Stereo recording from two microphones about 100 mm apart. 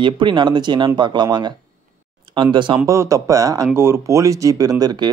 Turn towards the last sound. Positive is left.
turn(degrees=-40)  # may be behind; listen again after turning